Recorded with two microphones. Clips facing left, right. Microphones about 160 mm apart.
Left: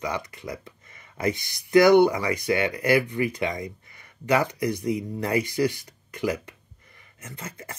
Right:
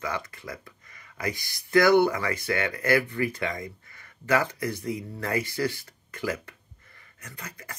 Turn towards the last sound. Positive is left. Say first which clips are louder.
# left 4 dB
turn(degrees=25)  # may be behind; listen again after turning